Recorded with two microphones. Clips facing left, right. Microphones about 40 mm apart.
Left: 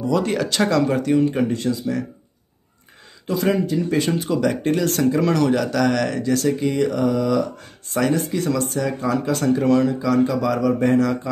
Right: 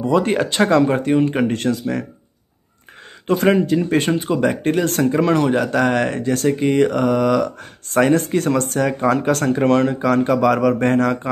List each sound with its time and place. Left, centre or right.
0.1 s speech: right
1.3 s speech: right
3.3 s speech: right
4.2 s speech: right